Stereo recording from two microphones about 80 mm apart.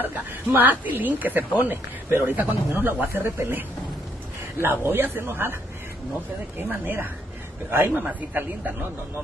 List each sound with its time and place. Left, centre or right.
0.0 s speech: right
6.7 s speech: right